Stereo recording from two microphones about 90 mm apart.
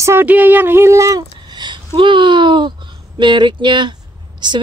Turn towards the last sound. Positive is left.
turn(degrees=-55)  # may be behind; listen again after turning